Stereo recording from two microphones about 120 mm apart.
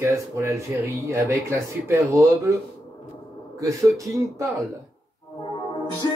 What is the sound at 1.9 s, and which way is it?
Speech, 25° right (ahead or behind).